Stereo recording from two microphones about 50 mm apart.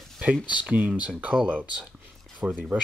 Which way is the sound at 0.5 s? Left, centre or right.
Right.